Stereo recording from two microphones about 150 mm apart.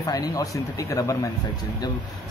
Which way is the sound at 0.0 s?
25° left (ahead or behind).